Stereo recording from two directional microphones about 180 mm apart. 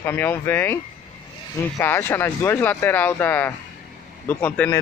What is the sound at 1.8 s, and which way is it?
Speech, 15° left (ahead or behind).